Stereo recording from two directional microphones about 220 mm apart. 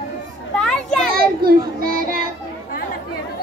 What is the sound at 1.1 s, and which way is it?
Children playing, 40° right (ahead or behind).